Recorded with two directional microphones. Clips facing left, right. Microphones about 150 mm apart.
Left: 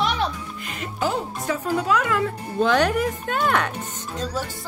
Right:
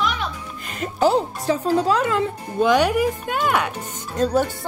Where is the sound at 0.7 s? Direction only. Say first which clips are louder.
Right 7 dB; 40° right (ahead or behind); by 2.3 s 25° right (ahead or behind).